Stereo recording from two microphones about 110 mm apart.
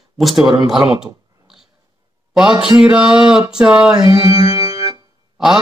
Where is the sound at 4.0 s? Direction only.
35° right (ahead or behind).